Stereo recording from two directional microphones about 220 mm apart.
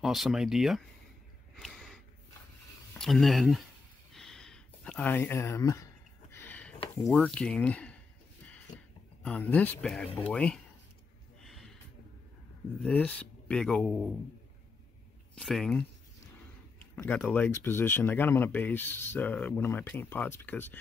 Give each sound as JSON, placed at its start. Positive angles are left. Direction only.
{"t": 0.0, "sound": "speech", "side_deg": 0}
{"t": 1.6, "sound": "a sound", "side_deg": 0}
{"t": 2.9, "sound": "speech", "side_deg": 0}
{"t": 4.1, "sound": "a sound", "side_deg": 0}
{"t": 7.1, "sound": "speech", "side_deg": 0}
{"t": 9.2, "sound": "speech", "side_deg": 5}
{"t": 11.4, "sound": "a sound", "side_deg": 0}
{"t": 12.8, "sound": "speech", "side_deg": 5}
{"t": 15.3, "sound": "speech", "side_deg": 5}
{"t": 16.9, "sound": "speech", "side_deg": 5}